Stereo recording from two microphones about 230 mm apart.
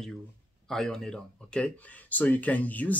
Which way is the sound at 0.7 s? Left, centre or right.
Centre.